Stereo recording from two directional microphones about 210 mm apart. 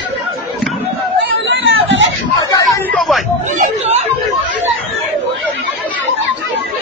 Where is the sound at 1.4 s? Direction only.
60° right (ahead or behind).